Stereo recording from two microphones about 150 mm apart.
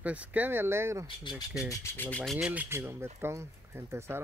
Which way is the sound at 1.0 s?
30° left (ahead or behind).